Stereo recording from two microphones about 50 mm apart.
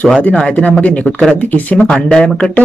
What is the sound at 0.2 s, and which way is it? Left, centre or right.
Speech, left.